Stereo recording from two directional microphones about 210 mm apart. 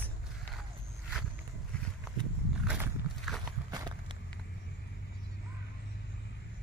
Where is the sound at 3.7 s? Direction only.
20° right (ahead or behind).